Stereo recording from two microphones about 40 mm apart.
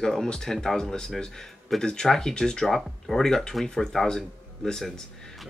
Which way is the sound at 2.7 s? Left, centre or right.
Centre.